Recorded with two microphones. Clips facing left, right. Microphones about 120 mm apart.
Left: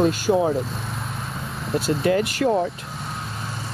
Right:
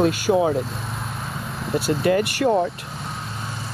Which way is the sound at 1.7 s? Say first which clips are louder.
Right 1 dB; centre (ahead or behind).